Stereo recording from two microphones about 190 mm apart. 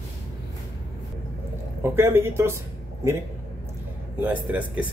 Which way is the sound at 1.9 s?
15° right (ahead or behind).